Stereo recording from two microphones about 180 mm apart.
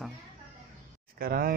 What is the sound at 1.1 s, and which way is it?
Speech, 55° right (ahead or behind).